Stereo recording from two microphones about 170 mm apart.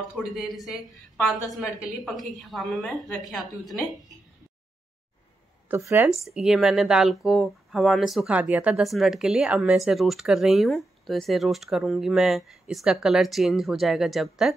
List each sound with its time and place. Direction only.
0.1 s speech: centre (ahead or behind)
5.7 s a woman's voice: 15° right (ahead or behind)
6.1 s speech: centre (ahead or behind)